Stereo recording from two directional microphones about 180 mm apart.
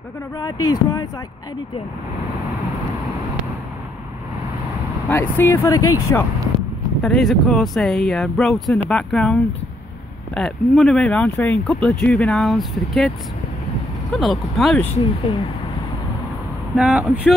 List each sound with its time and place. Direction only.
0.4 s speech: 20° left (ahead or behind)
5.0 s speech: 10° left (ahead or behind)
7.0 s speech: centre (ahead or behind)
14.1 s speech: centre (ahead or behind)
15.3 s speech: 30° left (ahead or behind)
16.7 s speech: 5° right (ahead or behind)